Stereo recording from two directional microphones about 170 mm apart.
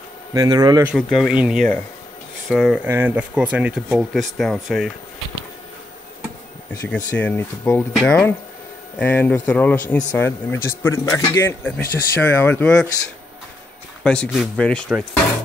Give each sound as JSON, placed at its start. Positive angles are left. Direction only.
{"t": 0.3, "sound": "speech", "side_deg": -20}
{"t": 0.9, "sound": "speech", "side_deg": 0}
{"t": 2.8, "sound": "speech", "side_deg": -10}
{"t": 6.7, "sound": "a man's voice", "side_deg": 15}
{"t": 14.0, "sound": "speech", "side_deg": 5}